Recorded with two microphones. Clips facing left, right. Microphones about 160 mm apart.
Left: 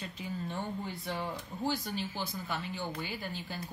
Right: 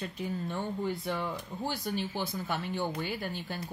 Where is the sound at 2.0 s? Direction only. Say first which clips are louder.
Right 3 dB; 55° right (ahead or behind).